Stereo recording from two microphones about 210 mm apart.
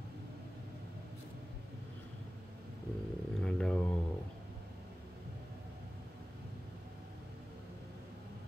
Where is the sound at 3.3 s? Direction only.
5° left (ahead or behind).